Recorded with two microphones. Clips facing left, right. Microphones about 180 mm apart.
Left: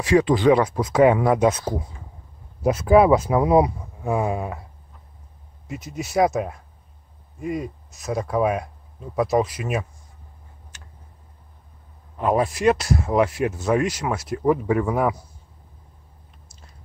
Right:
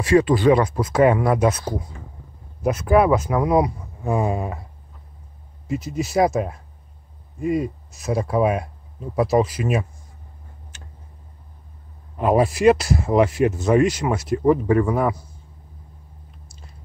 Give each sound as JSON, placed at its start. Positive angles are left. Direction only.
{"t": 0.0, "sound": "speech", "side_deg": 15}
{"t": 2.6, "sound": "speech", "side_deg": 25}
{"t": 4.0, "sound": "speech", "side_deg": 5}
{"t": 5.7, "sound": "speech", "side_deg": 0}
{"t": 12.2, "sound": "speech", "side_deg": -5}